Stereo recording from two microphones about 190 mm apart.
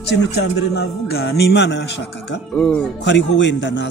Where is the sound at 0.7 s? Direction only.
55° left (ahead or behind).